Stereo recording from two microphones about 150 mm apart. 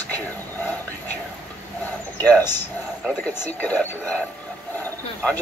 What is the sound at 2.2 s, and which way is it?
Speech, 10° left (ahead or behind).